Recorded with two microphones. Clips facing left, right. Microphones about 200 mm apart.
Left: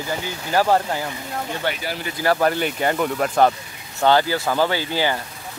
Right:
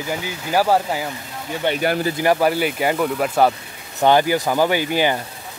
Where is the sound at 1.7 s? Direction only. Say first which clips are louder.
Right 7 dB; 20° right (ahead or behind).